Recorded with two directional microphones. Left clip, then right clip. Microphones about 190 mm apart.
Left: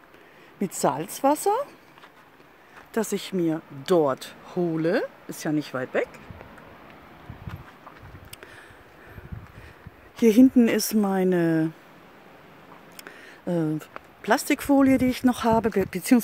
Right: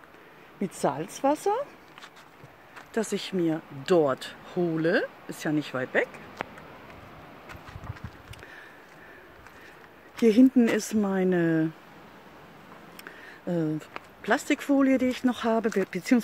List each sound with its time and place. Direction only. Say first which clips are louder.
0.6 s speech: left 3 dB; 35° left (ahead or behind)
2.9 s speech: left 2 dB; 35° left (ahead or behind)
10.2 s speech: left 3 dB; 25° left (ahead or behind)
13.5 s speech: left 3 dB; 35° left (ahead or behind)